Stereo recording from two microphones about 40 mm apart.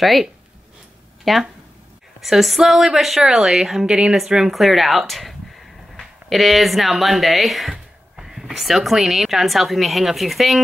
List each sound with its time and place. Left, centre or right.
0.0 s a woman's voice: centre
3.8 s a woman's voice: right
4.2 s a woman's voice: centre